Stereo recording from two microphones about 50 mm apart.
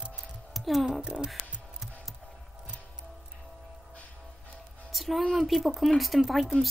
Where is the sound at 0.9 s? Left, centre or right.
Centre.